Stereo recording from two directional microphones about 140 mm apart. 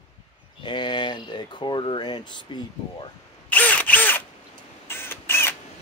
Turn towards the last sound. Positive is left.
turn(degrees=15)  # may be behind; listen again after turning